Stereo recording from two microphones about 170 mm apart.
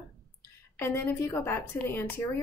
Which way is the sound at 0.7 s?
10° left (ahead or behind).